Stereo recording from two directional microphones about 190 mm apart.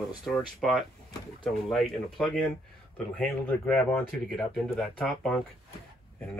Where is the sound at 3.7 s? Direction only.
5° left (ahead or behind).